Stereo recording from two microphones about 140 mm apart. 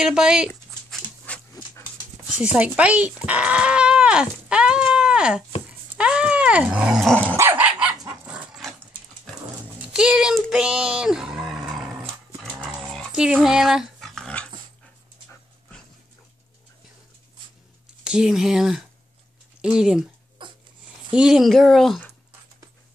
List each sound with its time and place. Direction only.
0.0 s speech: 5° right (ahead or behind)
1.3 s dog: 10° left (ahead or behind)
2.5 s speech: 10° right (ahead or behind)
5.9 s dog: 5° right (ahead or behind)
7.3 s dog: 15° right (ahead or behind)
9.8 s speech: 5° right (ahead or behind)
12.6 s dog: centre (ahead or behind)
18.0 s speech: 5° right (ahead or behind)
20.4 s a sound: 35° right (ahead or behind)
21.1 s speech: 5° right (ahead or behind)